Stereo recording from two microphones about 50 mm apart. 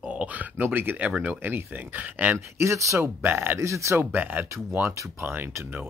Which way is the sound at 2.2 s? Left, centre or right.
Right.